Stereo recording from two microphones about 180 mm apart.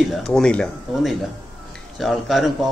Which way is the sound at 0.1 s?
Centre (ahead or behind).